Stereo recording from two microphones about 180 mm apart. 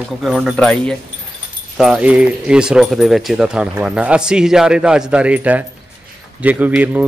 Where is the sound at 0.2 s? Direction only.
Centre (ahead or behind).